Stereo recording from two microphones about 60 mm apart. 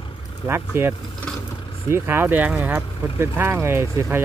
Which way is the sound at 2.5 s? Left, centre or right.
Right.